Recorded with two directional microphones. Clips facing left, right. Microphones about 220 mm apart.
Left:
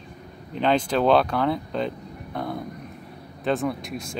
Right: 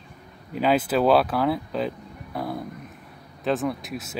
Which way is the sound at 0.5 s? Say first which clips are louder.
Right 1 dB; 5° right (ahead or behind).